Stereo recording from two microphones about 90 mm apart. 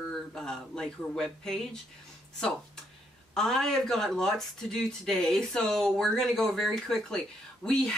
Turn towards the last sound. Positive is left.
turn(degrees=10)  # may be behind; listen again after turning